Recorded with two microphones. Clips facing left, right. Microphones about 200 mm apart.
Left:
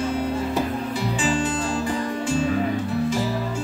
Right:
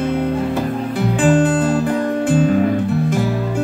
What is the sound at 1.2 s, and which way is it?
Music, 55° right (ahead or behind).